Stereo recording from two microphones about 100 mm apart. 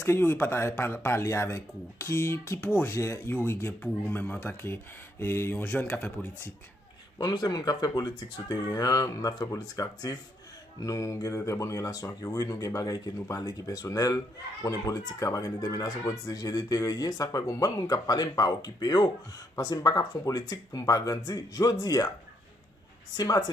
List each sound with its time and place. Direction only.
0.0 s speech: 25° left (ahead or behind)
7.2 s speech: 45° left (ahead or behind)
23.1 s speech: 40° left (ahead or behind)